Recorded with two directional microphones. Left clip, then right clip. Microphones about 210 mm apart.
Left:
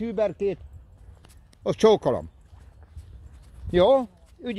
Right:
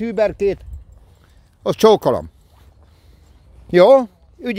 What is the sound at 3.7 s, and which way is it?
Speech, 40° right (ahead or behind).